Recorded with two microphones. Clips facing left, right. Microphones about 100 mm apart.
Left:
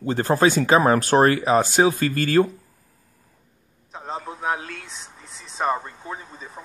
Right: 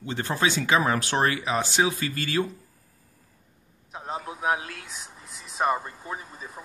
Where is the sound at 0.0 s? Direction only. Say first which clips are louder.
Left 8 dB; 40° left (ahead or behind).